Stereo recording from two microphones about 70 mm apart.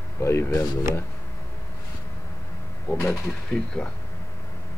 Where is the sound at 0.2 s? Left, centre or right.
Left.